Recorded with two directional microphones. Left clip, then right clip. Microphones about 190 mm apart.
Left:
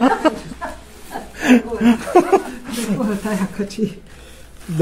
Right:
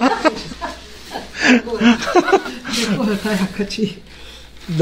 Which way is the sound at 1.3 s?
15° left (ahead or behind).